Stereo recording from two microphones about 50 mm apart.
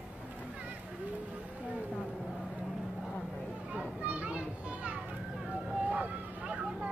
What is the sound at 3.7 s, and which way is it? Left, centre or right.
Children playing, right.